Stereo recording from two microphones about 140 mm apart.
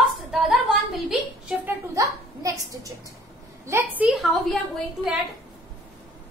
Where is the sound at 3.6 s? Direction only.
15° right (ahead or behind).